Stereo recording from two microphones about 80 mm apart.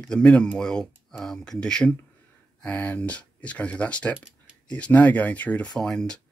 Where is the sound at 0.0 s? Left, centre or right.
Centre.